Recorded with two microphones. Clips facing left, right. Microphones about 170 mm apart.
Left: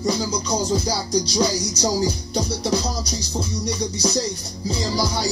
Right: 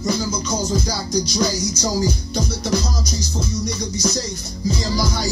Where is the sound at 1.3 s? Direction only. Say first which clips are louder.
Even; 35° left (ahead or behind).